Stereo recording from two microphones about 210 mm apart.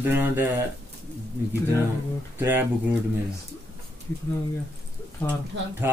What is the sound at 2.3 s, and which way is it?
Speech, 10° right (ahead or behind).